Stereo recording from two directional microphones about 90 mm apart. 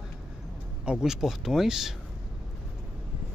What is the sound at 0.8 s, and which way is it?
Speech, 10° right (ahead or behind).